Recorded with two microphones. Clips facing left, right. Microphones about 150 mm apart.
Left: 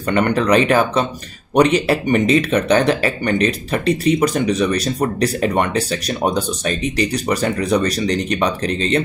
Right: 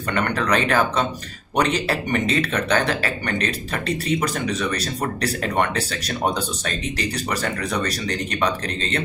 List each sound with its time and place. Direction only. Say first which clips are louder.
0.1 s speech: left 7 dB; 20° left (ahead or behind)